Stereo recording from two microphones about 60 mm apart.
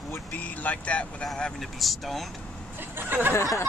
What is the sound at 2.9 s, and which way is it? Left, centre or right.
Speech, right.